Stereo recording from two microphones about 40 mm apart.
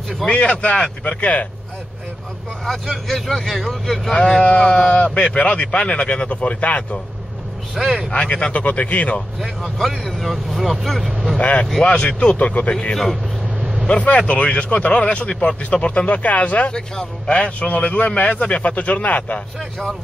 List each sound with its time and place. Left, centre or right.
0.3 s speech: left
2.6 s speech: centre
4.4 s speech: left
7.7 s speech: centre
8.1 s speech: left
8.5 s speech: left
9.8 s speech: centre
11.3 s speech: left
12.9 s speech: centre
13.8 s speech: left
16.7 s speech: centre
17.3 s speech: left